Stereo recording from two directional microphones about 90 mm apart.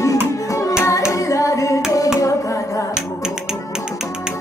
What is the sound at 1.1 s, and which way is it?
Singing, 40° left (ahead or behind).